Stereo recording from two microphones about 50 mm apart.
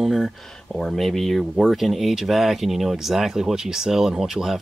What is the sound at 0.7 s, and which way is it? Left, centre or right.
Speech, centre.